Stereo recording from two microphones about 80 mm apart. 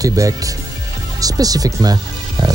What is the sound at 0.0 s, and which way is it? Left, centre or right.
Speech, right.